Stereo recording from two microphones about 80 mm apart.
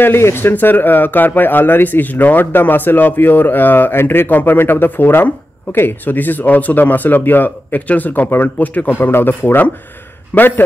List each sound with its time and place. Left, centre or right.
0.0 s speech: left